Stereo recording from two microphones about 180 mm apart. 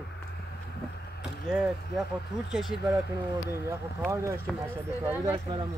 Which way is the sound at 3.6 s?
15° right (ahead or behind).